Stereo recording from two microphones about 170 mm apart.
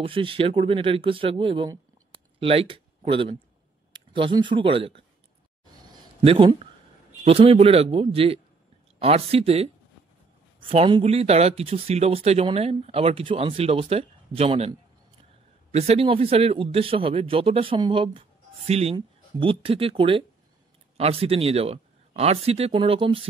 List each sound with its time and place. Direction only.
0.0 s speech: 30° right (ahead or behind)
2.1 s a sound: 35° right (ahead or behind)
3.9 s speech: 30° right (ahead or behind)
5.9 s a sound: 30° right (ahead or behind)
7.2 s speech: 35° right (ahead or behind)
10.7 s speech: 35° right (ahead or behind)